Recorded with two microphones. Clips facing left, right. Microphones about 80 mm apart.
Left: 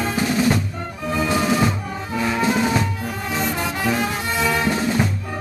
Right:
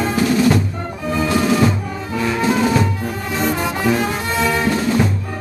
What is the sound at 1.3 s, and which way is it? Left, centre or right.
Music, centre.